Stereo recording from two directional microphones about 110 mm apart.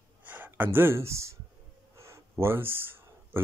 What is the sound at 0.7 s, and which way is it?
Speech, 25° right (ahead or behind).